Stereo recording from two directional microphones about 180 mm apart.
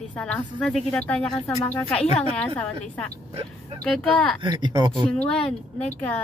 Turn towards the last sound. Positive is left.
turn(degrees=5)  # may be behind; listen again after turning